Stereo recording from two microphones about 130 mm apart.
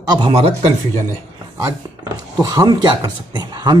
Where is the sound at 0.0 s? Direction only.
30° right (ahead or behind).